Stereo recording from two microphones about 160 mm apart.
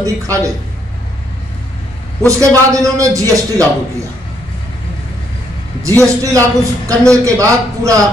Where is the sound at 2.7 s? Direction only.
20° right (ahead or behind).